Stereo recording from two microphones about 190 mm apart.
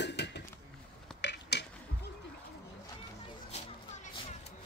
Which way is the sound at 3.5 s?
35° left (ahead or behind).